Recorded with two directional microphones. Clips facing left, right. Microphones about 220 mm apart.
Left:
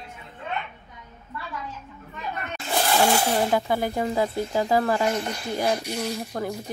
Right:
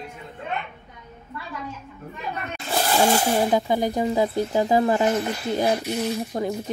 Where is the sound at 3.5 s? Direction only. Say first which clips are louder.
Right 2 dB; 15° right (ahead or behind).